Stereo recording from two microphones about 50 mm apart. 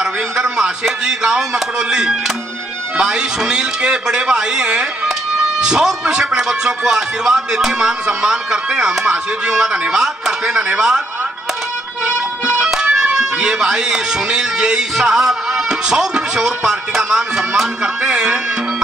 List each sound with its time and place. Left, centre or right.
0.0 s a man's voice: centre
12.4 s music: right
13.0 s a man's voice: centre